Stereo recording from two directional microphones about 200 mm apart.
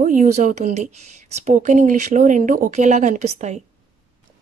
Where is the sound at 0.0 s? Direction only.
40° right (ahead or behind).